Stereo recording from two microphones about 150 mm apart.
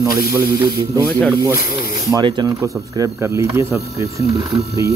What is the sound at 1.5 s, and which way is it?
Speech, 90° left.